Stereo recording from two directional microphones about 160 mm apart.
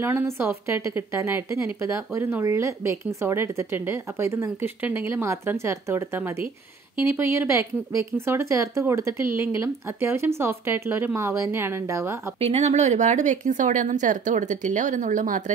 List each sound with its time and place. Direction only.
0.0 s speech: 15° right (ahead or behind)
12.4 s speech: 40° right (ahead or behind)